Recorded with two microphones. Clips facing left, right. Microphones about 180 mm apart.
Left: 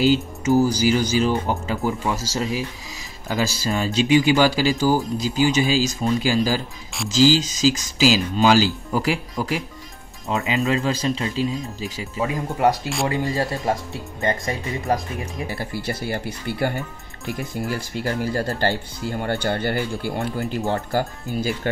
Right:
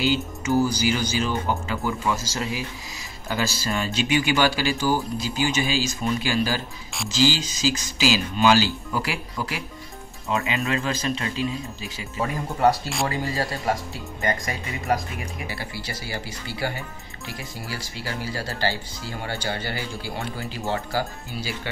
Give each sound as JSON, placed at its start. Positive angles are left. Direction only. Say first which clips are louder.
{"t": 0.0, "sound": "speech", "louder": "left 5 dB", "side_deg": 40}
{"t": 12.2, "sound": "speech", "louder": "left 1 dB", "side_deg": 15}
{"t": 15.4, "sound": "speech", "louder": "left 6 dB", "side_deg": 45}